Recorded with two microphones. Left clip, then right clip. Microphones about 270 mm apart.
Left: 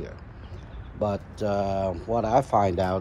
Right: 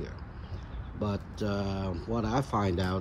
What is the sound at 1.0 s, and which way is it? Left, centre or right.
A man's voice, centre.